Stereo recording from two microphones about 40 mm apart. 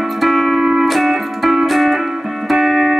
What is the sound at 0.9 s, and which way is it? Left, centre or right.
Music, centre.